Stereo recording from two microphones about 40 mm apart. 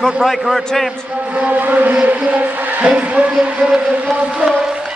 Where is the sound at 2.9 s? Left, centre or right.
Right.